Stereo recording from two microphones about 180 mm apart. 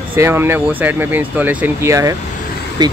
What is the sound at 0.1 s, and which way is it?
Speech, 10° right (ahead or behind).